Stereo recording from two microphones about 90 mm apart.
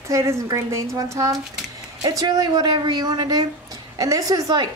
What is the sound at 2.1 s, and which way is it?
Speech, 40° right (ahead or behind).